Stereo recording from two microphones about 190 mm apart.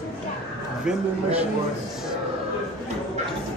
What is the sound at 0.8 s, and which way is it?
Speech, 5° right (ahead or behind).